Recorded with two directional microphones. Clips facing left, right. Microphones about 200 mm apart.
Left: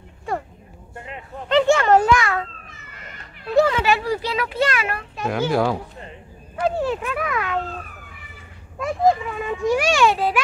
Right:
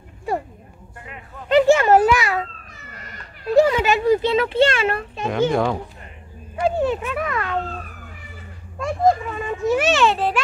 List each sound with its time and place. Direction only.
0.9 s a sound: 25° left (ahead or behind)
1.8 s a child's voice: 10° right (ahead or behind)
2.7 s cat: 40° right (ahead or behind)
3.5 s a child's voice: 15° right (ahead or behind)
5.2 s a child's voice: 5° left (ahead or behind)
8.7 s a child's voice: centre (ahead or behind)